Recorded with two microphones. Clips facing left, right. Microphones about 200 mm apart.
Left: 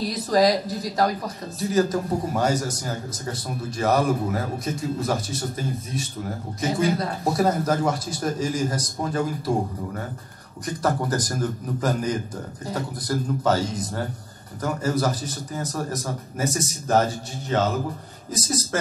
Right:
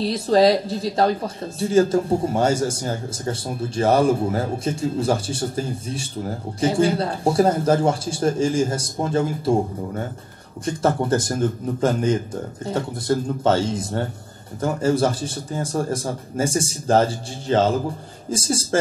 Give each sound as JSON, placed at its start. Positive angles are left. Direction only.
{"t": 0.0, "sound": "speech", "side_deg": -30}